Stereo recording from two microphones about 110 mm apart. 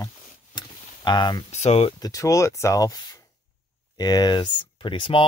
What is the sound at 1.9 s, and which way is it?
Speech, 35° left (ahead or behind).